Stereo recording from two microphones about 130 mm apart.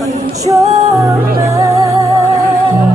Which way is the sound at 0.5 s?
25° right (ahead or behind).